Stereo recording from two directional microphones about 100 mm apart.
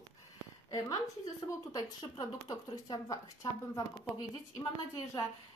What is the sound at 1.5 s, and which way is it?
A woman's voice, 35° left (ahead or behind).